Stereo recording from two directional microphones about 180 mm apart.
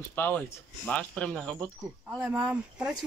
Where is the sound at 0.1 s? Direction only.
10° left (ahead or behind).